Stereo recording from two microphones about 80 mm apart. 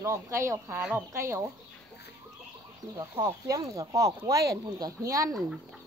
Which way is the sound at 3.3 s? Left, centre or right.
Right.